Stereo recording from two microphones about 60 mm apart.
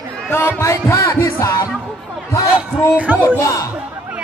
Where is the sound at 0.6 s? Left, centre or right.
Left.